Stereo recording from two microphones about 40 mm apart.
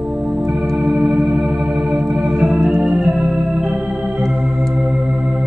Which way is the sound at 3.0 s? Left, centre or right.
Centre.